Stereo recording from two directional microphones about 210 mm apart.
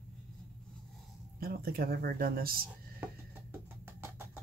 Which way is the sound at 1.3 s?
45° right (ahead or behind).